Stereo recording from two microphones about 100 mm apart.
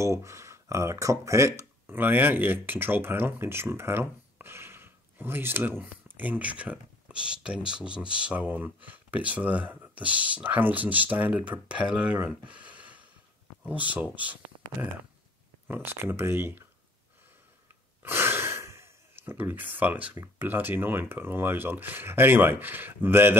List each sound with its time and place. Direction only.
0.0 s speech: 30° right (ahead or behind)
15.7 s speech: 20° right (ahead or behind)
18.0 s speech: 20° right (ahead or behind)